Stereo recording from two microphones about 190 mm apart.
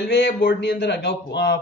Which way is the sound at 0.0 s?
65° left (ahead or behind).